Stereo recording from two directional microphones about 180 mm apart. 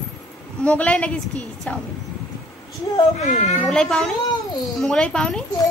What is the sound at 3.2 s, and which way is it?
Speech, 40° left (ahead or behind).